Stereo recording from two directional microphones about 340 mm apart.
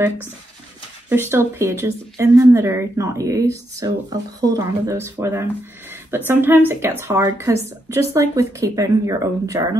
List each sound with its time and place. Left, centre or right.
1.0 s a woman's voice: centre